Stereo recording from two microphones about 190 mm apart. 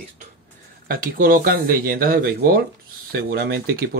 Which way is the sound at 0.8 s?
50° right (ahead or behind).